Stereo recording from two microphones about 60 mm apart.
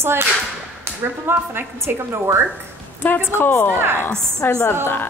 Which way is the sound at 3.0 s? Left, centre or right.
Left.